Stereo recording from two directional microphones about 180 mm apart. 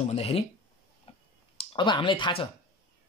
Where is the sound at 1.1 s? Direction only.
30° left (ahead or behind).